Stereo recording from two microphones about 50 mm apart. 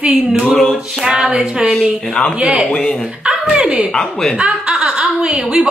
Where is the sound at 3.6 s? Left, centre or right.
Right.